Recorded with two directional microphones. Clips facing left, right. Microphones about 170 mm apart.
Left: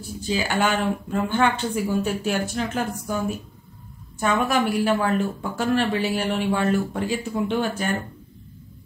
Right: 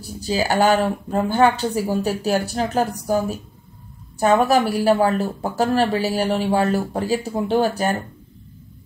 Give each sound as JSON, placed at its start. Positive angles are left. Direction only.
{"t": 0.0, "sound": "a woman's voice", "side_deg": -40}
{"t": 4.2, "sound": "a woman's voice", "side_deg": -40}